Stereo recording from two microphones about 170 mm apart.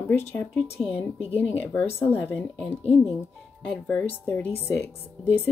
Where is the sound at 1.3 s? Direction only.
10° left (ahead or behind).